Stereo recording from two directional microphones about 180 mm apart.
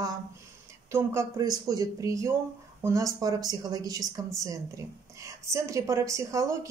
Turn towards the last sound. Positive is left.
turn(degrees=-20)  # may be behind; listen again after turning